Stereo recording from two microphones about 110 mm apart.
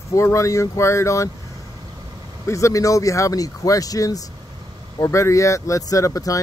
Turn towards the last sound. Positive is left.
turn(degrees=30)  # may be behind; listen again after turning